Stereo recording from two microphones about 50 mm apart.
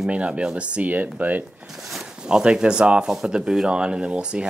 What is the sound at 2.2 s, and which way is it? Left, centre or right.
Speech, centre.